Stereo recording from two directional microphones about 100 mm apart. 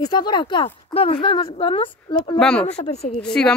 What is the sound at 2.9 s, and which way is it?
Speech, 90° left.